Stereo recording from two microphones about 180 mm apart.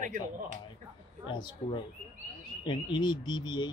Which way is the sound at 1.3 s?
25° left (ahead or behind).